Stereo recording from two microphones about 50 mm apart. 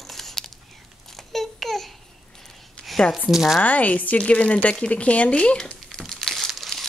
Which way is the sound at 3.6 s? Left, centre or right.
Left.